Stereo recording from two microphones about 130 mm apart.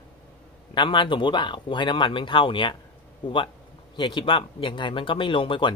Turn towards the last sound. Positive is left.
turn(degrees=40)  # may be behind; listen again after turning